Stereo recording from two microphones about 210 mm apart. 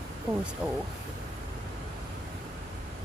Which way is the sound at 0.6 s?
5° right (ahead or behind).